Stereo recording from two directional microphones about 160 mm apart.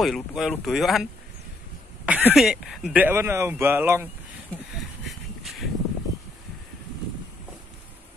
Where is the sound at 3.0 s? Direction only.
15° right (ahead or behind).